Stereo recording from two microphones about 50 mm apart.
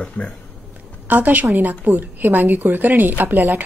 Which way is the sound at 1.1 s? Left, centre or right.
Right.